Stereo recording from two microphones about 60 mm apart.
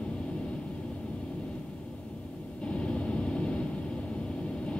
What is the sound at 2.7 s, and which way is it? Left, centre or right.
Vehicle, centre.